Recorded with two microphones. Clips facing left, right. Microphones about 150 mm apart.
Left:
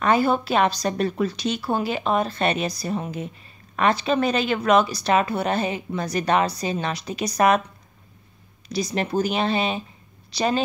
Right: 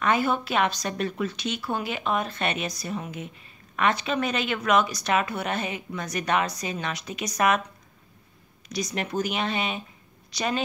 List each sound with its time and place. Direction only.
0.0 s speech: 35° left (ahead or behind)
8.6 s speech: 30° left (ahead or behind)